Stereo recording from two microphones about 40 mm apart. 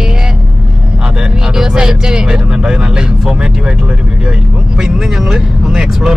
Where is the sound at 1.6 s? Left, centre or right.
Centre.